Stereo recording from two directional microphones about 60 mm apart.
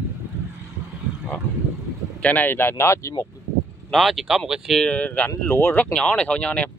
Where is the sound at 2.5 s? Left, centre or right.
Left.